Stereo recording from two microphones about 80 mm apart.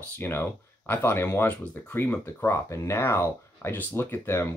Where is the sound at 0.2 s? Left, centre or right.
Left.